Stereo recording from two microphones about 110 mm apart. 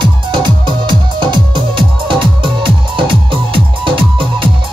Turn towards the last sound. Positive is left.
turn(degrees=-55)  # may be behind; listen again after turning